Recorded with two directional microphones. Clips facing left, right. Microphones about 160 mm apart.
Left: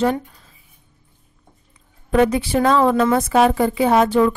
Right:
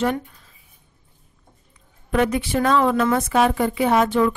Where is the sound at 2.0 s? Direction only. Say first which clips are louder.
Left 4 dB; 30° left (ahead or behind).